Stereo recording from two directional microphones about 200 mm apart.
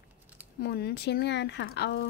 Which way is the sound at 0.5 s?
50° left (ahead or behind).